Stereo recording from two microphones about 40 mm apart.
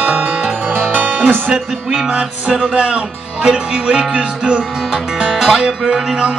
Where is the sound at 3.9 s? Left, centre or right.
Right.